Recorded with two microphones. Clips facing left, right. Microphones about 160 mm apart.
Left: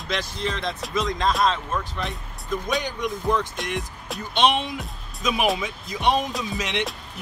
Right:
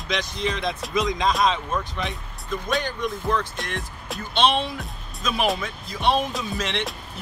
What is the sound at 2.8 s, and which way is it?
Speech, 15° left (ahead or behind).